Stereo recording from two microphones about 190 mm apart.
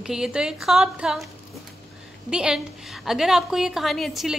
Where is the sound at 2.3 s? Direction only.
5° right (ahead or behind).